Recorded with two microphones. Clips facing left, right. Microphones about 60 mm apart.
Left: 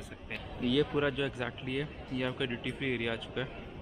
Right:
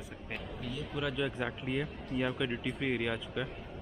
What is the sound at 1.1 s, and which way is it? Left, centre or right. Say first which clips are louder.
Speech: even; centre.